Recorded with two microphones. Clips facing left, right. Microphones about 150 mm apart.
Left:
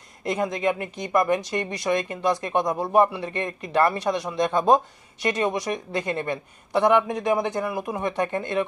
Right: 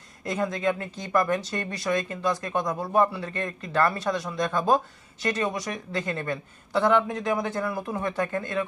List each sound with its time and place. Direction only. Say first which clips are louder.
0.2 s speech: left 2 dB; 20° left (ahead or behind)